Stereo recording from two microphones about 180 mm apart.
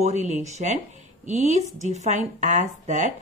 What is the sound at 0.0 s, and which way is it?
A woman's voice, 40° right (ahead or behind).